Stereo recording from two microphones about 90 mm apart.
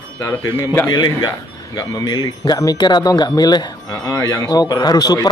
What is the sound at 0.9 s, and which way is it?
A man's voice, 55° left (ahead or behind).